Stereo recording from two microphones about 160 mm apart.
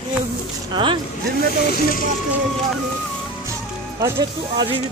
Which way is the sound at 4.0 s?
25° right (ahead or behind).